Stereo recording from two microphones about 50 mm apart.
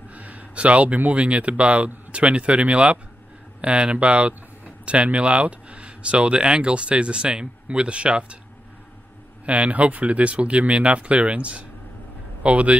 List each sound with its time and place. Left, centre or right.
0.1 s speech: right
9.5 s speech: right